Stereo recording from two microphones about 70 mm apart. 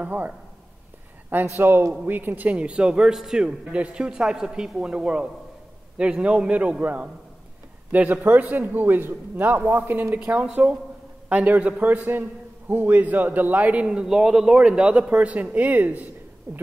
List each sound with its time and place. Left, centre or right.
0.0 s a man's voice: right
1.3 s a man's voice: right
16.5 s speech: right